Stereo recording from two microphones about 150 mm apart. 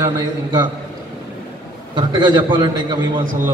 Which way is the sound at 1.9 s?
30° right (ahead or behind).